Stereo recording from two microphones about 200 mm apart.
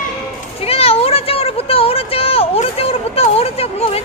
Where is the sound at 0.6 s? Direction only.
30° left (ahead or behind).